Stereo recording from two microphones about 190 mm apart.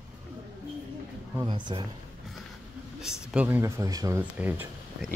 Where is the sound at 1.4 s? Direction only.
25° right (ahead or behind).